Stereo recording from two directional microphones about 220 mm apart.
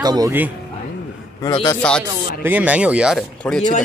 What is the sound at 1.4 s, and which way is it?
Speech, 15° left (ahead or behind).